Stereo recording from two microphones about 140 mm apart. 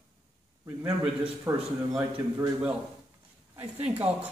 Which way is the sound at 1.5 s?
20° right (ahead or behind).